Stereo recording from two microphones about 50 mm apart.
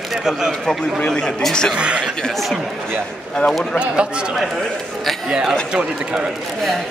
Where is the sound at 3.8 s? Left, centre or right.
Centre.